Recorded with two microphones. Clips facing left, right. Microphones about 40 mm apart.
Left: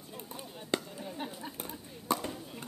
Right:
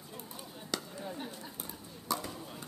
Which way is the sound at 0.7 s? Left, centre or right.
Left.